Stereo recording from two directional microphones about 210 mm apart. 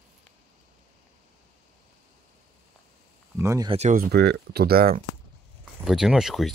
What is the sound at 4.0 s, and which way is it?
Speech, 50° right (ahead or behind).